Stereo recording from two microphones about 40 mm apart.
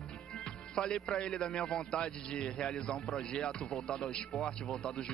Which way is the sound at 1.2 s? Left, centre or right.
Left.